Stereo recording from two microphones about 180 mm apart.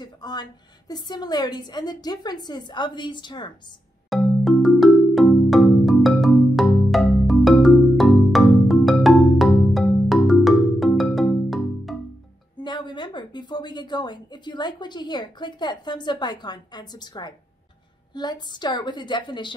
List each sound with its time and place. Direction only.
0.0 s a woman's voice: 25° left (ahead or behind)
4.1 s music: centre (ahead or behind)
12.6 s a woman's voice: 25° left (ahead or behind)